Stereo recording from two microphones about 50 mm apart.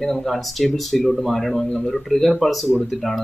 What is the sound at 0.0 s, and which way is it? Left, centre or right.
Speech, centre.